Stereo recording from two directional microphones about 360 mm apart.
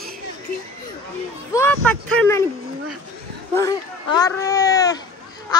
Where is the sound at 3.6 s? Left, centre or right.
Centre.